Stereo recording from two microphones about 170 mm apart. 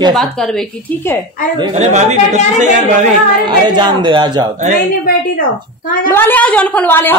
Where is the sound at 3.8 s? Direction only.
25° right (ahead or behind).